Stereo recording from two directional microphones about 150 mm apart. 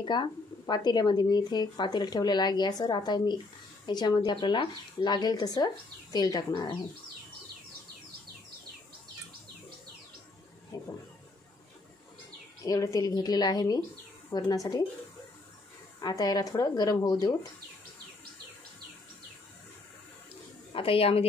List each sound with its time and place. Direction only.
0.0 s speech: 30° left (ahead or behind)
10.7 s a sound: 25° left (ahead or behind)
12.6 s speech: 25° left (ahead or behind)
16.0 s speech: 25° left (ahead or behind)
20.7 s a woman's voice: 40° left (ahead or behind)